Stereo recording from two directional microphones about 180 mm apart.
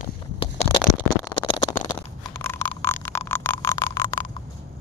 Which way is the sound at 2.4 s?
10° left (ahead or behind).